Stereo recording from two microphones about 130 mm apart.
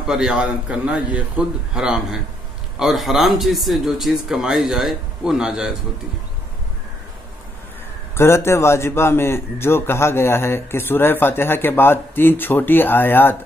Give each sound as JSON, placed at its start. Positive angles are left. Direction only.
{"t": 0.0, "sound": "a man's voice", "side_deg": -5}
{"t": 8.2, "sound": "a man's voice", "side_deg": 20}